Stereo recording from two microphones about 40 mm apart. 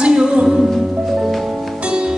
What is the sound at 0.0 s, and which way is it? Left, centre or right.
Music, right.